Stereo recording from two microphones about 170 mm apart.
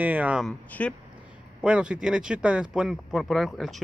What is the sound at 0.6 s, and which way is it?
Speech, 10° left (ahead or behind).